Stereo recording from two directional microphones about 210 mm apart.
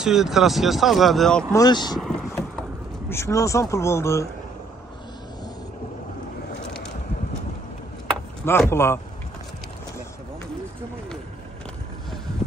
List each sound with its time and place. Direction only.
0.0 s speech: centre (ahead or behind)
1.5 s speech: 20° left (ahead or behind)
2.0 s vehicle: centre (ahead or behind)
3.1 s speech: 15° left (ahead or behind)
8.5 s speech: 10° left (ahead or behind)